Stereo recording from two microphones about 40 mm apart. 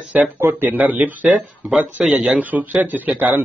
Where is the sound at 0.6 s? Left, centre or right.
Right.